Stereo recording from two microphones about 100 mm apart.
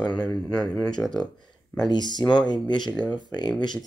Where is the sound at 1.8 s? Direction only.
45° left (ahead or behind).